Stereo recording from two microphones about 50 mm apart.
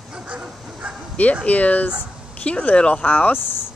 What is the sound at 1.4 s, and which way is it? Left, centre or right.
Speech, left.